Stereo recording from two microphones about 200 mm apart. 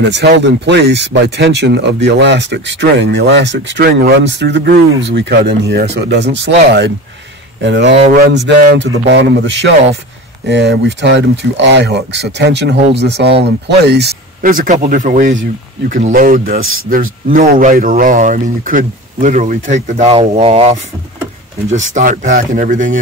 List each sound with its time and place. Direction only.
0.0 s speech: 55° right (ahead or behind); by 20.8 s 30° right (ahead or behind)
21.9 s speech: 40° right (ahead or behind)